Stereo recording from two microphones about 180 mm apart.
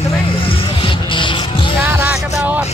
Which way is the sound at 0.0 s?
30° left (ahead or behind).